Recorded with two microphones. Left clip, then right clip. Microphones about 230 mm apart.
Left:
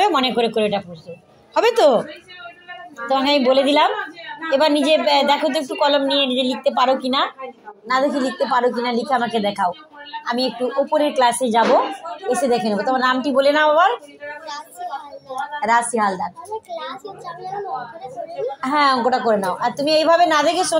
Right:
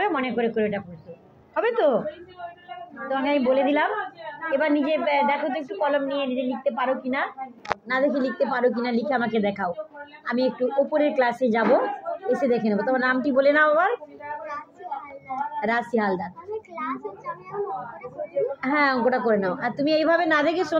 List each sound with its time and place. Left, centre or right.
0.0 s a woman's voice: left
3.1 s a woman's voice: left
7.9 s a woman's voice: centre
15.6 s a woman's voice: centre
18.6 s a woman's voice: centre